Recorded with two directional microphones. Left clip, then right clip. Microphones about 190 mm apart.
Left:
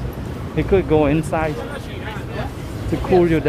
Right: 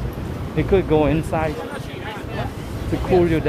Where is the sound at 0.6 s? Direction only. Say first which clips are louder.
Left 1 dB; 10° left (ahead or behind).